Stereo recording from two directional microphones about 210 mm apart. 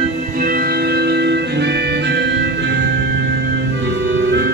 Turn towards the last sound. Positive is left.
turn(degrees=-55)  # may be behind; listen again after turning